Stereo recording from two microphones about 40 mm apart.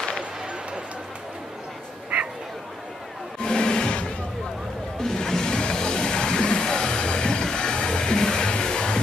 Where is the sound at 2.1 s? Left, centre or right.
Right.